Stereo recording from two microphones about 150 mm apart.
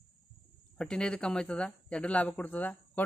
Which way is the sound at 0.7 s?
5° left (ahead or behind).